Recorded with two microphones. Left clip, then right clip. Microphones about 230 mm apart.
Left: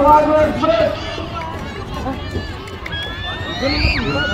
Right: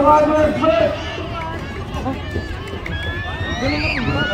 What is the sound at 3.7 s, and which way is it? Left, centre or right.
Speech, left.